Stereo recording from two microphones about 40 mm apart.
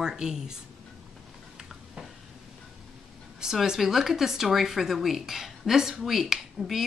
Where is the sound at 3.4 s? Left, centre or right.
Centre.